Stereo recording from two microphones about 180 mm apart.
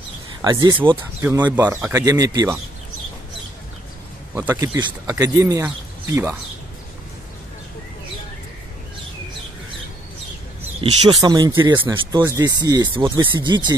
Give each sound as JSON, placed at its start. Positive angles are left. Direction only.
{"t": 0.4, "sound": "speech", "side_deg": -25}
{"t": 1.7, "sound": "speech", "side_deg": -10}
{"t": 4.3, "sound": "speech", "side_deg": -10}
{"t": 10.8, "sound": "speech", "side_deg": -25}